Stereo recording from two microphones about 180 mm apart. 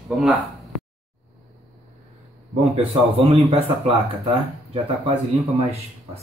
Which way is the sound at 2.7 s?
30° right (ahead or behind).